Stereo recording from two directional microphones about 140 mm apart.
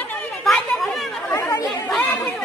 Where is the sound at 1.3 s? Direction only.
20° left (ahead or behind).